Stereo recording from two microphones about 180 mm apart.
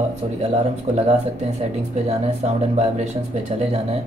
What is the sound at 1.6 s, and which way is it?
Speech, 35° right (ahead or behind).